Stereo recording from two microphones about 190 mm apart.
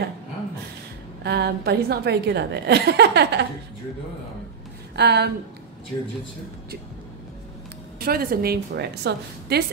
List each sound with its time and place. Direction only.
1.2 s a woman's voice: 60° right (ahead or behind)
4.9 s a woman's voice: 60° right (ahead or behind)
5.9 s speech: 10° left (ahead or behind)
8.0 s a woman's voice: 50° right (ahead or behind)